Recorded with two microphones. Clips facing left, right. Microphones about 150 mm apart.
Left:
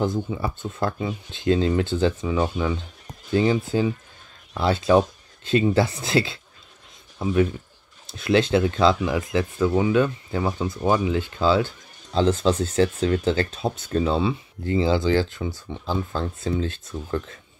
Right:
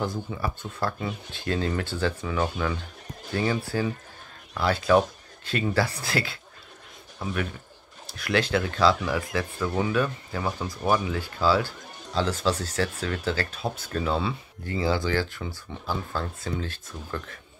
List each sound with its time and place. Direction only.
0.0 s speech: 20° left (ahead or behind)